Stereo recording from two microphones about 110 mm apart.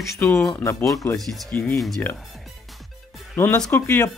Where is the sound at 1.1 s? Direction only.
Centre (ahead or behind).